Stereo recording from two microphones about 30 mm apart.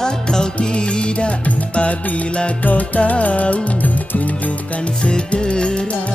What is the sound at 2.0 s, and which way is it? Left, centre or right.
Music, left.